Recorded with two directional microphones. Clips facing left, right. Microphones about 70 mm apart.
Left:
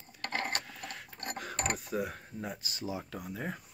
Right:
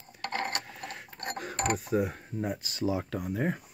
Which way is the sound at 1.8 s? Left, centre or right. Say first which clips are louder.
Right 6 dB; right.